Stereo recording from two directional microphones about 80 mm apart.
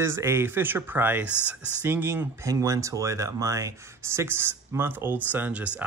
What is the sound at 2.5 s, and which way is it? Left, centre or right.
Speech, right.